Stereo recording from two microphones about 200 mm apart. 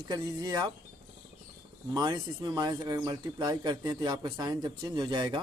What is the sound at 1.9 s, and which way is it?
Speech, 20° right (ahead or behind).